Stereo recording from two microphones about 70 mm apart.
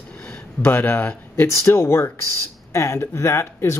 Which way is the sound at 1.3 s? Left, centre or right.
Left.